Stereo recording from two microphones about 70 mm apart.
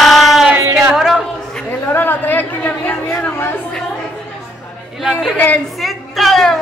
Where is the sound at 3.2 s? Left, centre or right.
Left.